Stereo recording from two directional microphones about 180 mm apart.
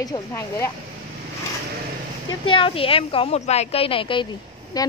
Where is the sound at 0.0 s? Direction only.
15° left (ahead or behind).